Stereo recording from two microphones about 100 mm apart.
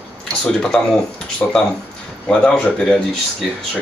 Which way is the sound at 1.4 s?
15° left (ahead or behind).